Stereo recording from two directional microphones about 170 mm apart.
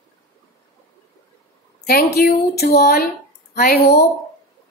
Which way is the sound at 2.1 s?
65° left (ahead or behind).